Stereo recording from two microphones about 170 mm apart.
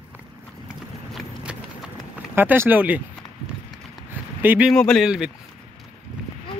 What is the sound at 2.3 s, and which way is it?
Speech, 10° right (ahead or behind).